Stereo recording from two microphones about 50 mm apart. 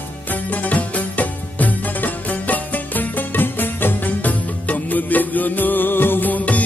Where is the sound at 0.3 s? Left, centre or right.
Left.